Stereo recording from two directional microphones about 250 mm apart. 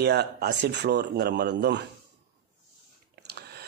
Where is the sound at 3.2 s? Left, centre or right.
Right.